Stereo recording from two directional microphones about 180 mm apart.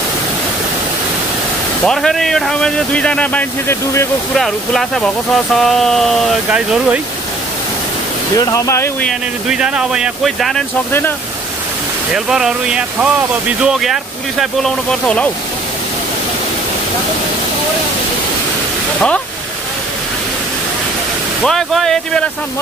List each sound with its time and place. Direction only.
1.9 s speech: centre (ahead or behind)
4.4 s speech: centre (ahead or behind)
8.4 s speech: 20° left (ahead or behind)
9.5 s speech: 5° right (ahead or behind)
10.9 s speech: 10° left (ahead or behind)
12.1 s speech: 5° right (ahead or behind)
18.9 s speech: 5° left (ahead or behind)
21.4 s speech: centre (ahead or behind)